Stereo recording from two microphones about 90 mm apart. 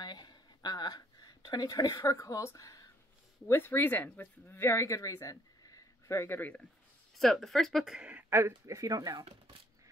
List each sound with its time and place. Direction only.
0.0 s a sound: 50° left (ahead or behind)
3.4 s speech: 25° left (ahead or behind)
7.2 s speech: centre (ahead or behind)
8.1 s speech: 20° right (ahead or behind); by 9.2 s 40° right (ahead or behind)